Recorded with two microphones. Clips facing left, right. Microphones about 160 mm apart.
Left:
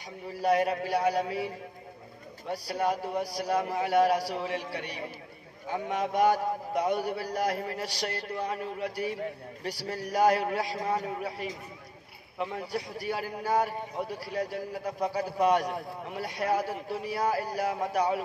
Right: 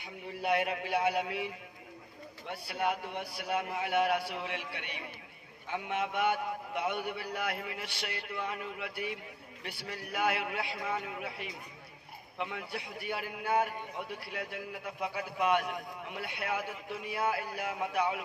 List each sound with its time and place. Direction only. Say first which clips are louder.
0.3 s a man's voice: left 5 dB; 40° left (ahead or behind)